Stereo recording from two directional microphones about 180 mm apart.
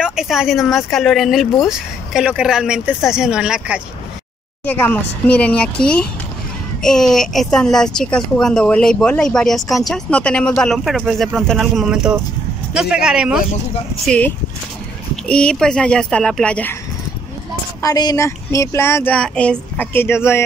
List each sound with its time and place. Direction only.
0.0 s speech: 5° right (ahead or behind)
4.6 s speech: 10° left (ahead or behind)
14.0 s speech: 5° left (ahead or behind)
17.8 s speech: 20° left (ahead or behind)